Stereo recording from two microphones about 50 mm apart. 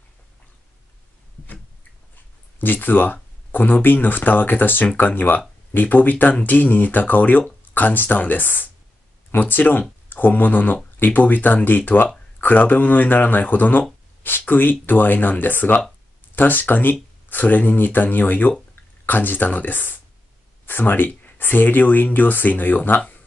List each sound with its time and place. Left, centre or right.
2.6 s speech: left